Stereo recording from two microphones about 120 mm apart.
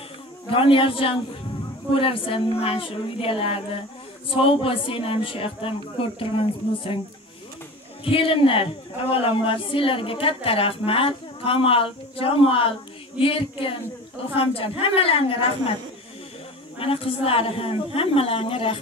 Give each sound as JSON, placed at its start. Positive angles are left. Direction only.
{"t": 0.5, "sound": "a woman's voice", "side_deg": 50}
{"t": 8.0, "sound": "a woman's voice", "side_deg": 50}
{"t": 16.7, "sound": "a woman's voice", "side_deg": 50}